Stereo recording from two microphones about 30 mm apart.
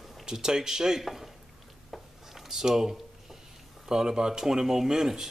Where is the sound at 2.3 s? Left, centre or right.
Centre.